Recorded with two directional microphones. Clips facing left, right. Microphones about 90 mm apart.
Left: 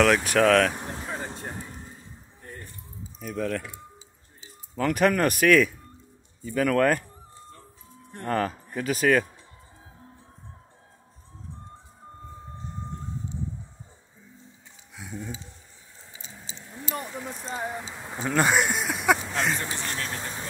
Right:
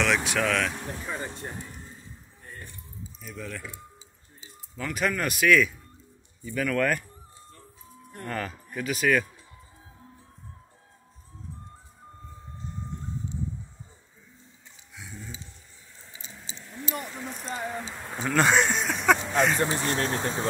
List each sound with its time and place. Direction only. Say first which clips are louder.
0.0 s speech: left 6 dB; 45° left (ahead or behind)
1.1 s vehicle: even; 25° left (ahead or behind)
3.2 s speech: left 10 dB; 60° left (ahead or behind)
4.7 s speech: left 6 dB; 55° left (ahead or behind); by 7.1 s 35° left (ahead or behind)
8.1 s speech: left 6 dB; 35° left (ahead or behind)
15.0 s speech: left 7 dB; 55° left (ahead or behind)
16.2 s a sound: even; 15° left (ahead or behind)
17.5 s speech: even; 15° left (ahead or behind)
19.6 s speech: right 6 dB; 35° right (ahead or behind)